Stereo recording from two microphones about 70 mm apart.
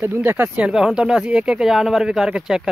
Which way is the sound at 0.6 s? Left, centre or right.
Centre.